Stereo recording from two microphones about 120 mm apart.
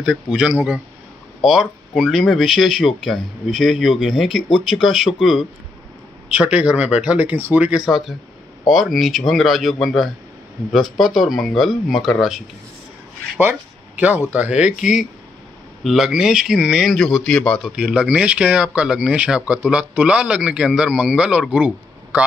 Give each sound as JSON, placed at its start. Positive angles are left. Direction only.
{"t": 0.0, "sound": "speech", "side_deg": -5}
{"t": 13.4, "sound": "speech", "side_deg": -15}
{"t": 15.8, "sound": "speech", "side_deg": 0}